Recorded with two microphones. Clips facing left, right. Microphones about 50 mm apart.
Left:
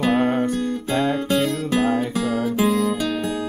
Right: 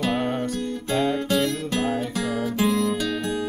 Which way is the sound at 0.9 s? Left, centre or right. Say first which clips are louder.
Left 1 dB; centre.